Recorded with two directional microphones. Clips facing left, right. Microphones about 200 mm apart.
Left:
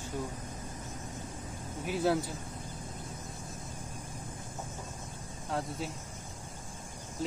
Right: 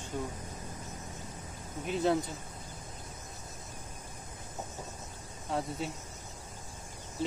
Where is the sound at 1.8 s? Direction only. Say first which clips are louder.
Even; 5° left (ahead or behind).